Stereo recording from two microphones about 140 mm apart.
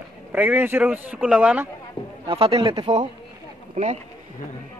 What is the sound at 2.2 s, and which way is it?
Speech, 45° right (ahead or behind).